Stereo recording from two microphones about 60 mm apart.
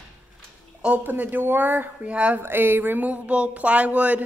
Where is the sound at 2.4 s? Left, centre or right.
Right.